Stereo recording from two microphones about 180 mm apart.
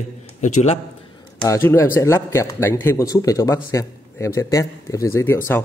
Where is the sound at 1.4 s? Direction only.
15° left (ahead or behind).